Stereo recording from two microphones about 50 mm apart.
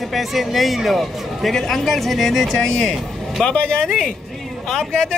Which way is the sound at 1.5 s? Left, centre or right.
Centre.